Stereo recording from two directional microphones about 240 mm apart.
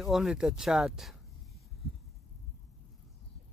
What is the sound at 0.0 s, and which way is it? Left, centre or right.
Speech, centre.